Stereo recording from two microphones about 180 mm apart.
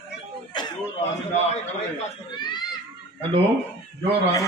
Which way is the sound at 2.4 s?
25° left (ahead or behind).